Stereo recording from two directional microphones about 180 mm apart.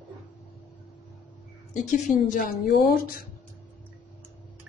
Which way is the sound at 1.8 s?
45° left (ahead or behind).